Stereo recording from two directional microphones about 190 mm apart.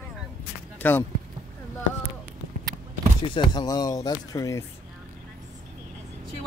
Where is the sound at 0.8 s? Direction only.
10° left (ahead or behind).